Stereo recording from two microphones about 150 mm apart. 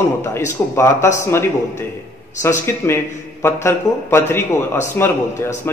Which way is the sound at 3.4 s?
15° left (ahead or behind).